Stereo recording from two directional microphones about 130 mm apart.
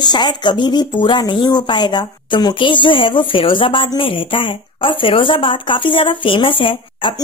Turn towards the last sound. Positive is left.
turn(degrees=40)  # may be behind; listen again after turning